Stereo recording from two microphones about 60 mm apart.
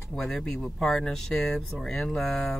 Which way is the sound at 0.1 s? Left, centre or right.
Centre.